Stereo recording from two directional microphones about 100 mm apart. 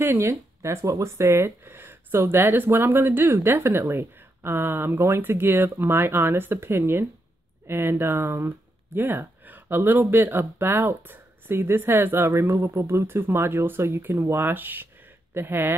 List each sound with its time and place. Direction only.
0.0 s speech: 25° right (ahead or behind)